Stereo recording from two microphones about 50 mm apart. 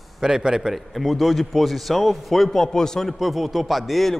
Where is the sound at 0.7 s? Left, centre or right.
Centre.